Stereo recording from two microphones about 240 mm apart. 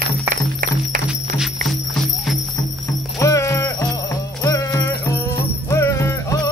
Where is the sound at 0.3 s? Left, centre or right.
Right.